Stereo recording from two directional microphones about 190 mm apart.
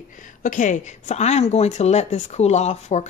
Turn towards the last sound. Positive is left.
turn(degrees=35)  # may be behind; listen again after turning